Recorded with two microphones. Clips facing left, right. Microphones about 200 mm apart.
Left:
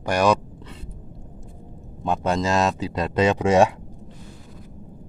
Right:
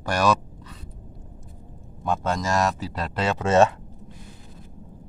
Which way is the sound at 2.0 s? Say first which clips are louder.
Left 3 dB; 20° left (ahead or behind).